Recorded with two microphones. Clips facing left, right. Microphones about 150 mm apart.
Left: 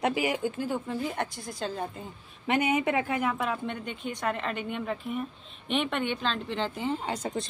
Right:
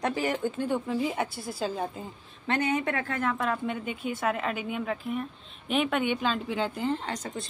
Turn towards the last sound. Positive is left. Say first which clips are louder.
# even
turn(degrees=10)  # may be behind; listen again after turning